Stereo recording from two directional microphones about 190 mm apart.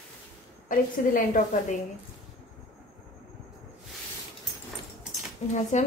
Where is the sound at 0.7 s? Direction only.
45° left (ahead or behind).